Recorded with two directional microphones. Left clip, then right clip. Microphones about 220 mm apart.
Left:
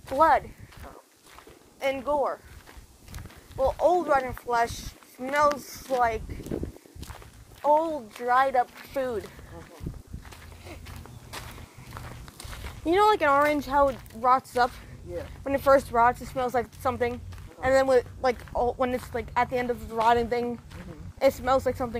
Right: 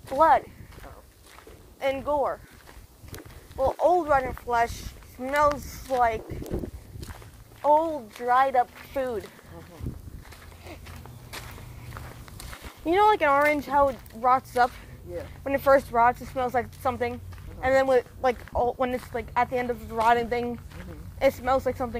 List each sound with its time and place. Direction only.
0.1 s speech: 15° right (ahead or behind)
1.8 s speech: 20° right (ahead or behind)
3.5 s speech: 10° right (ahead or behind)
7.6 s speech: 20° right (ahead or behind)
11.3 s biting: 25° right (ahead or behind)
12.8 s speech: centre (ahead or behind)